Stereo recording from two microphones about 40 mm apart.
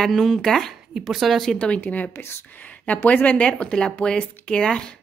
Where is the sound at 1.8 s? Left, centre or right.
Left.